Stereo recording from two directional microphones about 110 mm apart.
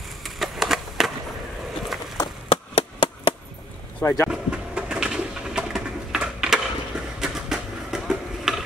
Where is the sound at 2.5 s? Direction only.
55° left (ahead or behind).